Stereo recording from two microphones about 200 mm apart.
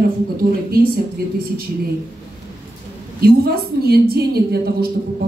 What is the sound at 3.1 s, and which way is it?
A woman's voice, 50° right (ahead or behind).